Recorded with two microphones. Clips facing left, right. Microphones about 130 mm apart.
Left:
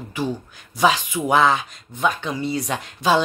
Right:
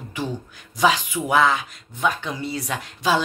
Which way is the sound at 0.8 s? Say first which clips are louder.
Left 1 dB; 20° left (ahead or behind).